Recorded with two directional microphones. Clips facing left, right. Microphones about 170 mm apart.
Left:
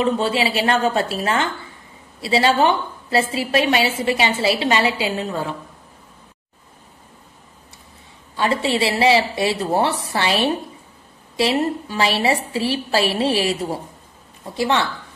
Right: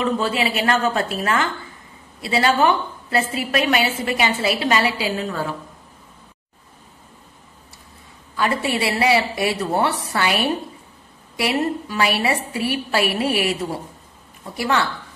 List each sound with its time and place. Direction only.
0.0 s a woman's voice: 30° left (ahead or behind)
8.4 s a woman's voice: 25° left (ahead or behind)